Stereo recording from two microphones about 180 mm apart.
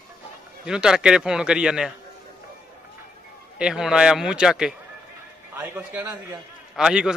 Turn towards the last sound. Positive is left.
turn(degrees=-5)  # may be behind; listen again after turning